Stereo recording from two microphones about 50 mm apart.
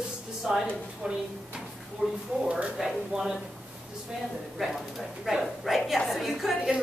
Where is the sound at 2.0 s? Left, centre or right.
Centre.